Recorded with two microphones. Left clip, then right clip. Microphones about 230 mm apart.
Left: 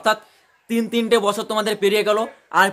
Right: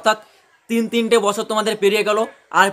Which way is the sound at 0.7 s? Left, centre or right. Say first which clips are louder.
Right 1 dB; centre.